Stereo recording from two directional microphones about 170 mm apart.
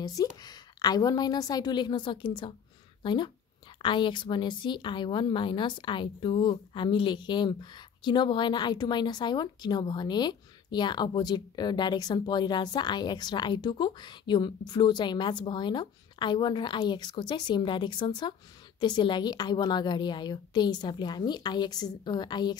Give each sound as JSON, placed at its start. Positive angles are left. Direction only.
{"t": 0.0, "sound": "a woman's voice", "side_deg": 20}